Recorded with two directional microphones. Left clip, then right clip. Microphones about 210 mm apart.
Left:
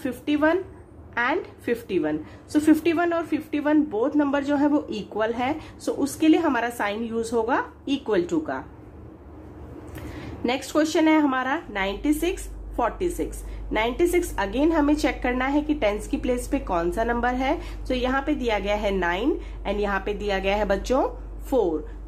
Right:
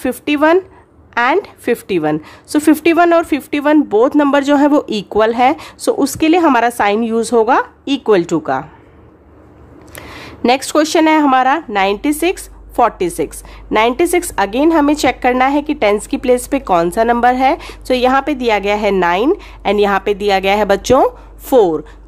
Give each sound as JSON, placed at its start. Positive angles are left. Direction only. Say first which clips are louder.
{"t": 0.0, "sound": "a woman's voice", "louder": "right 10 dB", "side_deg": -40}
{"t": 10.4, "sound": "a woman's voice", "louder": "right 11 dB", "side_deg": -45}